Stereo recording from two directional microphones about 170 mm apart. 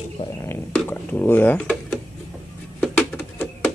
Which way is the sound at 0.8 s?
10° left (ahead or behind).